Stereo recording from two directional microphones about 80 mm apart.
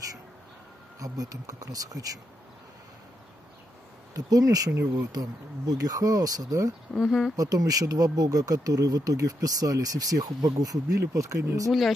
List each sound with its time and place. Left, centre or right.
0.9 s speech: right
4.1 s speech: right
6.9 s speech: centre
7.3 s speech: right